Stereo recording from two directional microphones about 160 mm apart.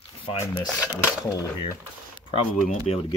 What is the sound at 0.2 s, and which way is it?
Speech, 35° left (ahead or behind).